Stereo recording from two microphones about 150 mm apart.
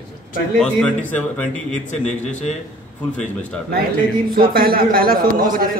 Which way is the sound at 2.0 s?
55° left (ahead or behind).